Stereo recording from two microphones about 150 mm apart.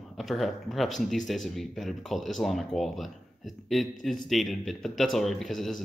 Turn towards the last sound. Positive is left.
turn(degrees=0)  # may be behind; listen again after turning